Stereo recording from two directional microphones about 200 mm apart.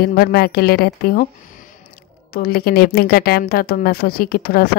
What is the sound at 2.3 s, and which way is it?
A woman's voice, 50° left (ahead or behind).